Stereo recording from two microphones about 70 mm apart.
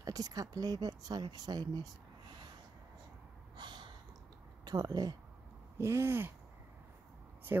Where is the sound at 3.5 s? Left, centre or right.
Right.